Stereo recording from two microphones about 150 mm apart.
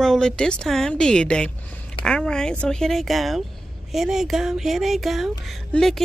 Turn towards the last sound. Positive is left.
turn(degrees=0)  # may be behind; listen again after turning